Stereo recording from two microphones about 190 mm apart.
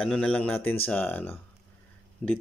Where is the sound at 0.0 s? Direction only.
5° left (ahead or behind).